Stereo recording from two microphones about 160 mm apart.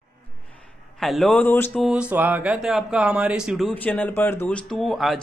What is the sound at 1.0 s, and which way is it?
Speech, centre (ahead or behind).